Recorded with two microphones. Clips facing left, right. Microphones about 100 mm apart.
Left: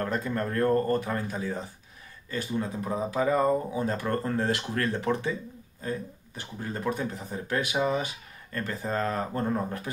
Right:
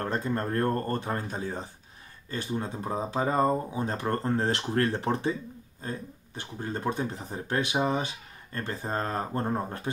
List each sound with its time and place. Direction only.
0.0 s speech: 35° right (ahead or behind)
6.6 s speech: 30° right (ahead or behind)